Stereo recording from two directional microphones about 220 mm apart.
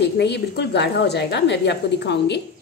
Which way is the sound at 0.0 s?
50° left (ahead or behind).